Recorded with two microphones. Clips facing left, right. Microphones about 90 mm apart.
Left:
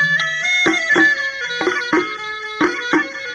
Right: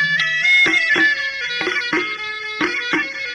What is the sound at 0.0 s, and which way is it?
Music, 30° left (ahead or behind).